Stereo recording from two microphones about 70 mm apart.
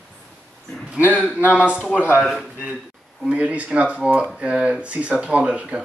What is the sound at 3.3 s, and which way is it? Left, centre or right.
Speech, centre.